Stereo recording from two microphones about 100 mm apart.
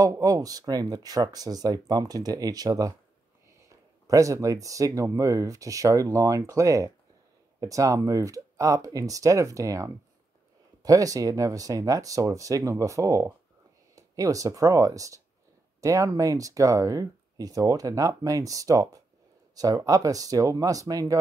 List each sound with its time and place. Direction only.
0.0 s speech: 35° right (ahead or behind)